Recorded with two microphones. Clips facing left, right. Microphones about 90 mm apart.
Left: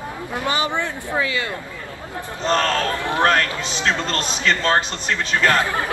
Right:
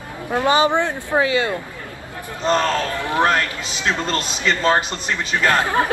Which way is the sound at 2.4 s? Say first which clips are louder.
Right 1 dB; 10° right (ahead or behind).